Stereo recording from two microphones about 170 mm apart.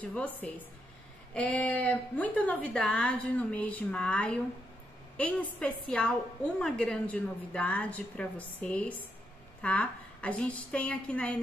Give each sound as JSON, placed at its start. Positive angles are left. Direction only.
{"t": 0.0, "sound": "a woman's voice", "side_deg": 10}